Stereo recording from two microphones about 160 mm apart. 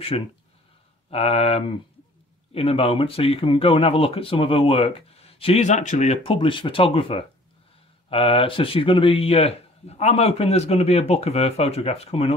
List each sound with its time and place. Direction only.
0.1 s speech: 40° left (ahead or behind)
6.3 s speech: 30° left (ahead or behind)